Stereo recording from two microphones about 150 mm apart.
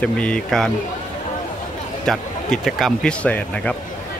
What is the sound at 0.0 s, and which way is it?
Speech, 5° left (ahead or behind).